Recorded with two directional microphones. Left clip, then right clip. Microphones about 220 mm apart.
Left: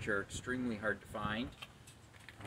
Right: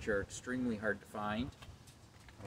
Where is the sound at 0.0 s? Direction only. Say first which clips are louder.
Right 1 dB; 20° right (ahead or behind).